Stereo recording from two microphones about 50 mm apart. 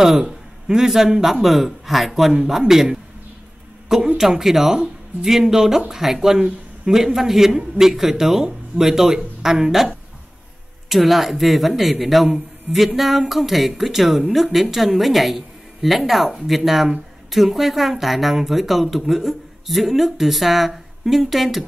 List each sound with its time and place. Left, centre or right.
0.0 s a man's voice: centre
4.2 s speech: centre
6.4 s a sound: centre
7.0 s speech: centre
10.9 s speech: centre